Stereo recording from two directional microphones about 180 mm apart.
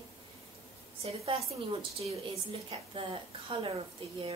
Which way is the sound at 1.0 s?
35° right (ahead or behind).